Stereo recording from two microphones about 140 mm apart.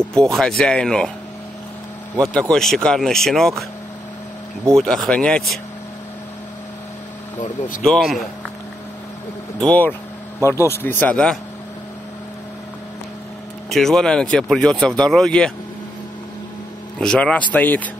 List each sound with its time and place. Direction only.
0.0 s speech: 5° left (ahead or behind)
2.1 s speech: 5° left (ahead or behind)
4.7 s speech: centre (ahead or behind)
7.8 s speech: 5° left (ahead or behind)
9.6 s speech: 10° left (ahead or behind)
13.7 s speech: 5° left (ahead or behind)
17.0 s speech: 5° left (ahead or behind)